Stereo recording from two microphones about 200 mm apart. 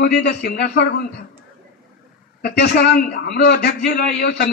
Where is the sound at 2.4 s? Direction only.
55° left (ahead or behind).